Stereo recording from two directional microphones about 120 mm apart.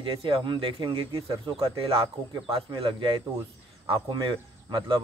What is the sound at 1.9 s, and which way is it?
Speech, 50° right (ahead or behind).